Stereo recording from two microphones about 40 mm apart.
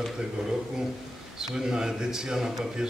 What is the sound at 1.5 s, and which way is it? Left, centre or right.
A man's voice, centre.